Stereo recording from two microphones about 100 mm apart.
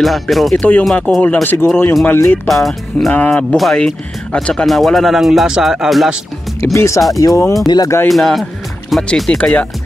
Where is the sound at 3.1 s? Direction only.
15° left (ahead or behind); by 6.1 s centre (ahead or behind).